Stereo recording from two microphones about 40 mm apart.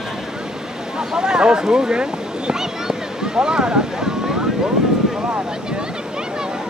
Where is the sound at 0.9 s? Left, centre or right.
Centre.